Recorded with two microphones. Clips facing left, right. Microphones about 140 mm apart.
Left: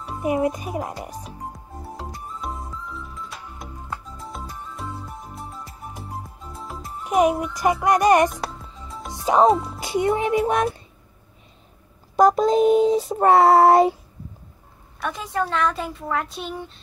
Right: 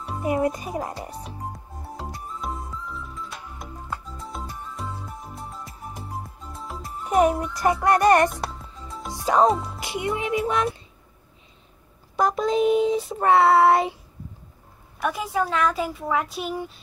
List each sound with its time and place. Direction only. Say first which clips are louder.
0.6 s a woman's voice: left 1 dB; centre (ahead or behind)
2.0 s music: right 2 dB; centre (ahead or behind)
8.8 s music: right 1 dB; centre (ahead or behind)
9.2 s speech: left 2 dB; 20° left (ahead or behind)
9.8 s speech: left 6 dB; 35° left (ahead or behind)
12.2 s child singing: left 5 dB; 40° left (ahead or behind)
15.0 s a woman's voice: right 1 dB; 10° right (ahead or behind)